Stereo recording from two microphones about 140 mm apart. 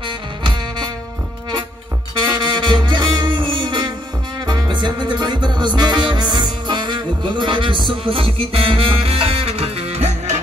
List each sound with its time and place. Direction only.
0.0 s music: 30° right (ahead or behind)
2.2 s music: 30° right (ahead or behind); by 10.4 s 50° right (ahead or behind)